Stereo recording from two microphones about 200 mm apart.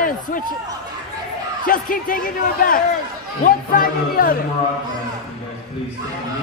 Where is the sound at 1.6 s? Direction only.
45° left (ahead or behind).